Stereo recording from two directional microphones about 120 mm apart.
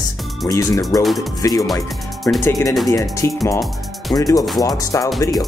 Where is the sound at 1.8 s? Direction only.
Centre (ahead or behind).